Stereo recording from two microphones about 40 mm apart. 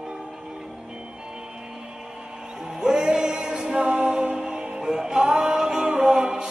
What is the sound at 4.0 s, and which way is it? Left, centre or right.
Music, right.